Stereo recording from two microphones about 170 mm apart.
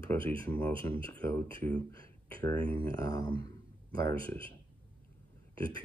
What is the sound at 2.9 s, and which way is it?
Speech, 20° left (ahead or behind).